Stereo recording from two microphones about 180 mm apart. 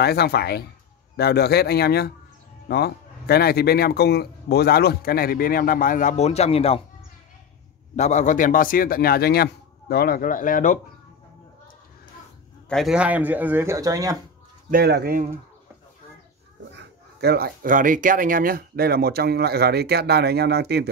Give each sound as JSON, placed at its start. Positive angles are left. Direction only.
{"t": 0.0, "sound": "a man's voice", "side_deg": 65}
{"t": 7.9, "sound": "a man's voice", "side_deg": 40}
{"t": 12.6, "sound": "speech", "side_deg": 0}
{"t": 14.7, "sound": "speech", "side_deg": -60}
{"t": 16.7, "sound": "speech", "side_deg": -65}